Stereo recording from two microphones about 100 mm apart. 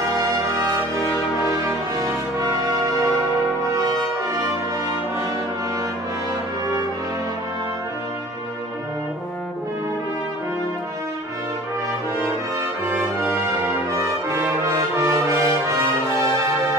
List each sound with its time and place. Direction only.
1.6 s music: 35° right (ahead or behind)
12.8 s brass instrument: 20° right (ahead or behind)
15.0 s brass instrument: 30° right (ahead or behind)